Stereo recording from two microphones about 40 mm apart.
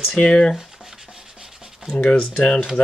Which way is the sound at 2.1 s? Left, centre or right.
Left.